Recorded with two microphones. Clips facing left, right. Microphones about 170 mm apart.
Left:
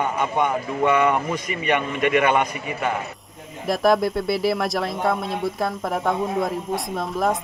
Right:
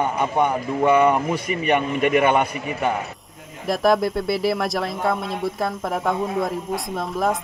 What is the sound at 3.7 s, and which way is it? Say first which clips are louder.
Speech: even; centre (ahead or behind).